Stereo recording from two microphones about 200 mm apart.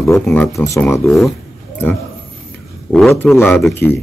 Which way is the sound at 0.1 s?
10° left (ahead or behind).